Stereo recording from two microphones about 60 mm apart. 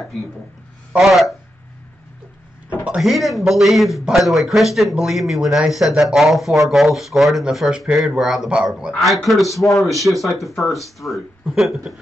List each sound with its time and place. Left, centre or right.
0.9 s speech: centre
2.7 s a sound: centre
3.0 s speech: centre